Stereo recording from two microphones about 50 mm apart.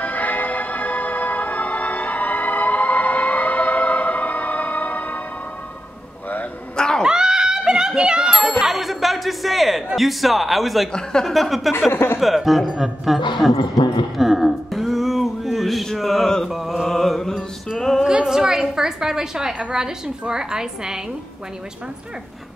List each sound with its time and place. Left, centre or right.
0.0 s music: left
7.0 s ding: centre
9.9 s a man's voice: centre
10.9 s speech: centre
11.2 s a man's voice: centre
11.9 s speech: left
12.2 s a man's voice: centre
14.1 s music: centre
16.4 s mantra: centre
17.7 s speech: centre
18.0 s a woman's voice: centre